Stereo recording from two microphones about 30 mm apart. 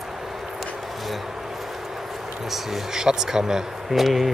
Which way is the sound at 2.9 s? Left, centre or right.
Centre.